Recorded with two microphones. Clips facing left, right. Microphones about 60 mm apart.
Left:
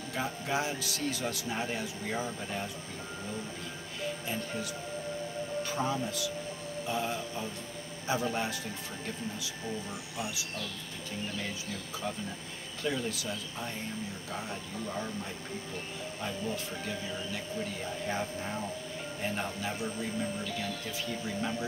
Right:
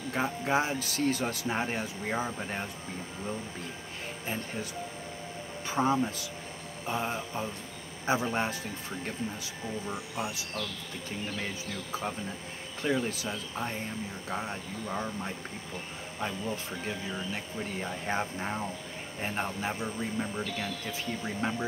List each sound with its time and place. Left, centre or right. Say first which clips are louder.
0.1 s speech: right 5 dB; right
5.6 s speech: right 6 dB; right
9.8 s speech: right 3 dB; right
12.8 s speech: right 3 dB; right
18.0 s speech: right 2 dB; right
21.4 s speech: right 3 dB; right